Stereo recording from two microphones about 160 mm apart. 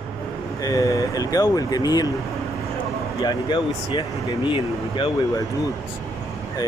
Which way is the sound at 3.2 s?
30° left (ahead or behind).